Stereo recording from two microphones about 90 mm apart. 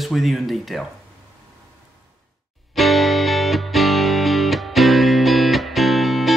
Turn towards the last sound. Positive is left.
turn(degrees=0)  # may be behind; listen again after turning